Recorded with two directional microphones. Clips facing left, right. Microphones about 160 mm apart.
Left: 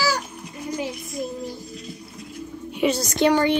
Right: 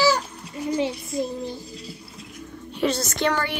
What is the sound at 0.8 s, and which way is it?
A child's voice, 25° right (ahead or behind).